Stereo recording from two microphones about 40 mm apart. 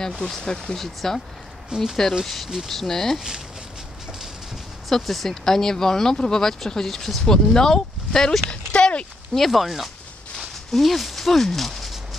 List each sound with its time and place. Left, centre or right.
0.2 s speech: centre
1.7 s speech: centre
2.2 s speech: centre
3.2 s speech: centre
4.8 s speech: centre
8.5 s a sound: left
9.3 s speech: centre